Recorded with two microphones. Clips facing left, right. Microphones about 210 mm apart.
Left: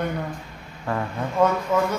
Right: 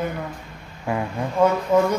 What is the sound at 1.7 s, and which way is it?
Speech, 35° right (ahead or behind).